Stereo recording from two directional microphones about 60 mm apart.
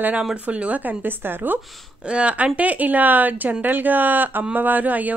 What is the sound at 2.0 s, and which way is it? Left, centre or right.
A woman's voice, centre.